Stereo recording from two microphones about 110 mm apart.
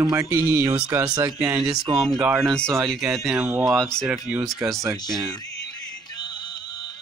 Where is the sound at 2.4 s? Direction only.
10° left (ahead or behind).